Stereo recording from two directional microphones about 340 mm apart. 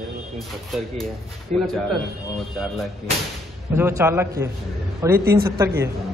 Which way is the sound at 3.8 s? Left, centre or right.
Centre.